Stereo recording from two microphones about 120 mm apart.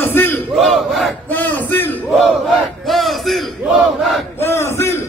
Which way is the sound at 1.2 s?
15° left (ahead or behind).